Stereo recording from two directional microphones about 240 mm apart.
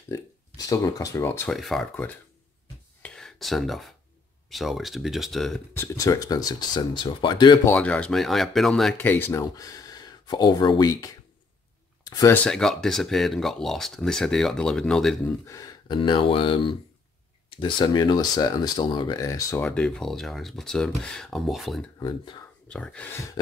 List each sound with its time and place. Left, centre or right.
0.6 s speech: centre
3.0 s a sound: centre
4.5 s speech: centre
5.9 s speech: centre
7.7 s speech: centre
12.4 s speech: centre
15.4 s speech: centre
22.0 s speech: centre
22.7 s speech: centre